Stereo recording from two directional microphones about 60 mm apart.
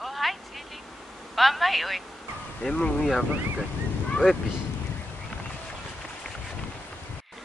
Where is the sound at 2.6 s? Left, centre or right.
Centre.